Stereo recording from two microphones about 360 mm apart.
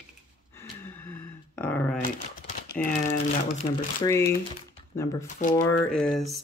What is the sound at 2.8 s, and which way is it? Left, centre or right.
Speech, centre.